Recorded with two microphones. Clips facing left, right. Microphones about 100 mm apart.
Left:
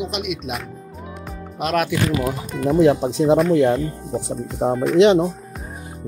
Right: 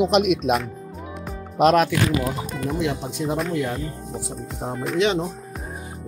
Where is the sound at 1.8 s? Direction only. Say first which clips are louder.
Even; 5° left (ahead or behind).